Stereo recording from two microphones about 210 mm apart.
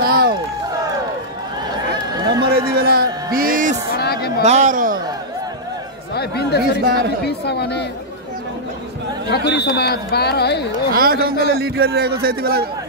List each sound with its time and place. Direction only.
0.0 s run: 45° right (ahead or behind)
2.4 s a sound: 50° right (ahead or behind)
3.3 s music: 40° right (ahead or behind)
4.0 s a sound: 50° left (ahead or behind)
4.4 s a sound: 35° right (ahead or behind)
6.1 s speech: 50° left (ahead or behind)
6.8 s a man's voice: 45° right (ahead or behind)
7.2 s speech: 50° left (ahead or behind)
9.3 s speech: 50° left (ahead or behind)
11.0 s a man's voice: 45° right (ahead or behind)